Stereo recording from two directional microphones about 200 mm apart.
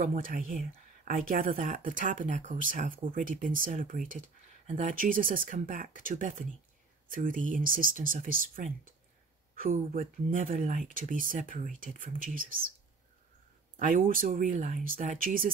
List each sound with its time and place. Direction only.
0.0 s speech: 45° right (ahead or behind)
13.7 s speech: 40° right (ahead or behind)